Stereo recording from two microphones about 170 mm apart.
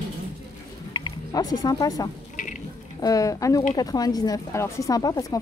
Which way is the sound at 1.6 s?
20° left (ahead or behind).